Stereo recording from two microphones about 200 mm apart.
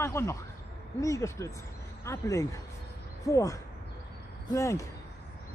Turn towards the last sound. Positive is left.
turn(degrees=15)  # may be behind; listen again after turning